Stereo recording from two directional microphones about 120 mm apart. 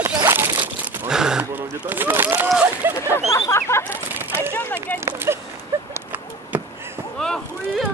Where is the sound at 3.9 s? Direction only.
15° right (ahead or behind).